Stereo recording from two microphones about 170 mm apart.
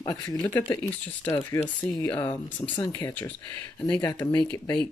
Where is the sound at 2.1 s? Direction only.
10° left (ahead or behind).